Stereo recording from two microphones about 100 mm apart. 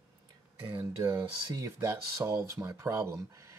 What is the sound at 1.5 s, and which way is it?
Speech, 30° right (ahead or behind).